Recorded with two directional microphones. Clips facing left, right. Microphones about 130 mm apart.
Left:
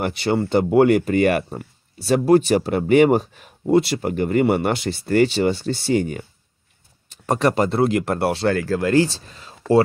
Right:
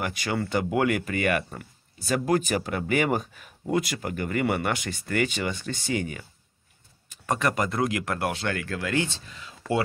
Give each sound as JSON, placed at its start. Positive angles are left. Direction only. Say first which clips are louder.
{"t": 0.0, "sound": "speech", "louder": "left 8 dB", "side_deg": 30}